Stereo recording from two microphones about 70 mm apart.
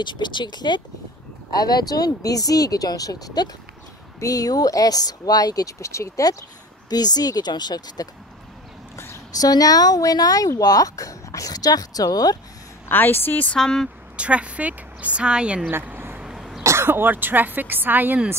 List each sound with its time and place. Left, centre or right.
0.0 s speech: left
1.5 s speech: left
6.9 s speech: left
8.9 s a sound: left
9.4 s speech: left
12.8 s a woman's voice: left
13.6 s speech: centre
14.1 s speech: centre
15.7 s a sound: right
16.2 s throat clearing: centre
16.6 s speech: right